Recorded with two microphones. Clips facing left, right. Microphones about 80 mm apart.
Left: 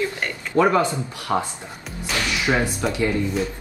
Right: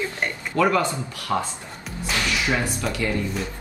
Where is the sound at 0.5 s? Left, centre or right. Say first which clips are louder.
Left 3 dB; left.